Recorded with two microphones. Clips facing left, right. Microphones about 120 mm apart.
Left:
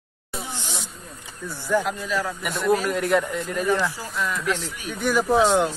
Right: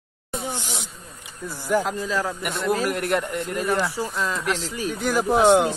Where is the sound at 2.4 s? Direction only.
Centre (ahead or behind).